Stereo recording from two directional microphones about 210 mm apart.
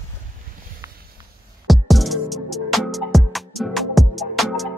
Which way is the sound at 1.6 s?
Centre (ahead or behind).